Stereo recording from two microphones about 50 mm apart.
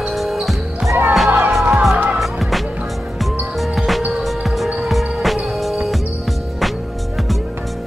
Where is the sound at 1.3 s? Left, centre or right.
Right.